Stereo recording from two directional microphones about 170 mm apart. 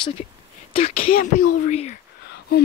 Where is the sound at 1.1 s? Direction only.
55° left (ahead or behind).